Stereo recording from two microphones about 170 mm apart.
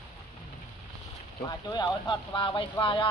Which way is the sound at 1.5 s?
25° left (ahead or behind).